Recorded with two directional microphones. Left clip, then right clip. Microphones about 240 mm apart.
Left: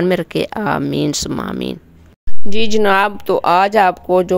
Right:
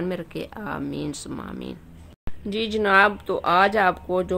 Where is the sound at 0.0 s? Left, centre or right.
Left.